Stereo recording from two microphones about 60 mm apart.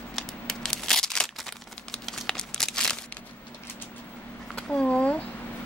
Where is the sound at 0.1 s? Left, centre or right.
Centre.